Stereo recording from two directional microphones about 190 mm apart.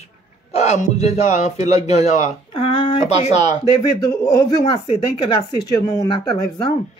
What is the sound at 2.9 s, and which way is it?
Speech, 35° left (ahead or behind).